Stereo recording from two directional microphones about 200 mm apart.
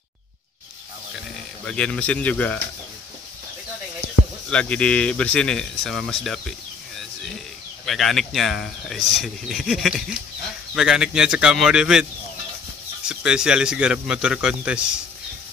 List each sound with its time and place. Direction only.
1.6 s speech: 5° left (ahead or behind)
4.5 s speech: 5° left (ahead or behind)
7.8 s speech: centre (ahead or behind)
13.1 s speech: 5° right (ahead or behind)